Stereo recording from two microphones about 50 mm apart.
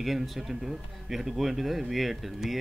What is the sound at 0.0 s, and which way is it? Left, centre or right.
Speech, centre.